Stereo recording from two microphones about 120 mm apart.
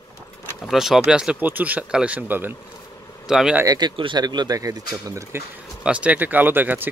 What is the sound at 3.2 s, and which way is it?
Speech, 5° right (ahead or behind).